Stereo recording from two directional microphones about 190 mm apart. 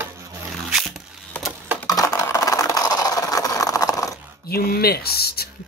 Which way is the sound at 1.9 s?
15° left (ahead or behind).